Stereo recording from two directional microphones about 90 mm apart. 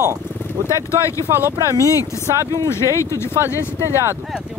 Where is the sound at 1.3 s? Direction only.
30° right (ahead or behind).